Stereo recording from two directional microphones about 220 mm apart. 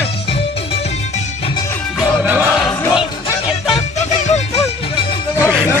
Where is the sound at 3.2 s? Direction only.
25° left (ahead or behind).